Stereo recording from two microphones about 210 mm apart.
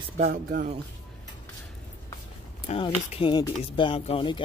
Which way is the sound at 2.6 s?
25° left (ahead or behind).